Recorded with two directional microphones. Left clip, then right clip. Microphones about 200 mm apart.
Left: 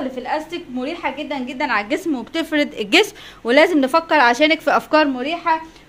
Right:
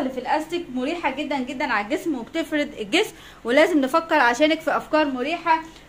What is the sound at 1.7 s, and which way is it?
A woman's voice, 45° left (ahead or behind).